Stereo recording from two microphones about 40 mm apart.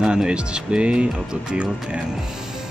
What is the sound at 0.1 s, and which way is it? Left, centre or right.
Speech, right.